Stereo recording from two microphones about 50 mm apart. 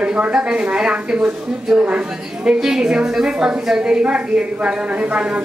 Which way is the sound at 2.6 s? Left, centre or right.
Centre.